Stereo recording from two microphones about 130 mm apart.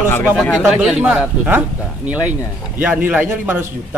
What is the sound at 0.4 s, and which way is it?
A man's voice, centre (ahead or behind).